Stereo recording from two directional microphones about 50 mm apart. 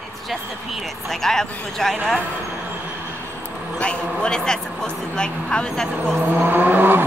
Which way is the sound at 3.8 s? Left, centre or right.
Left.